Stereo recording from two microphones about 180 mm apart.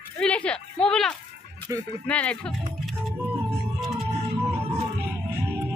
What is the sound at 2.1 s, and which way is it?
Speech, 5° left (ahead or behind).